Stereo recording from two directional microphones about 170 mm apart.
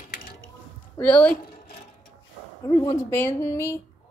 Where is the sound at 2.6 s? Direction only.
20° left (ahead or behind).